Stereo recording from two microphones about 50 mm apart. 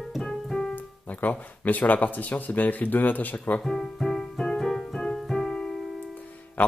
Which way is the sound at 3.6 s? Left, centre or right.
Centre.